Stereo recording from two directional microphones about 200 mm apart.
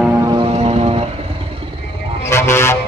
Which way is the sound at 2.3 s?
15° left (ahead or behind).